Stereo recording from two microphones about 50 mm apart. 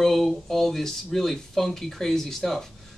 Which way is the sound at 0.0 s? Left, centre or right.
Centre.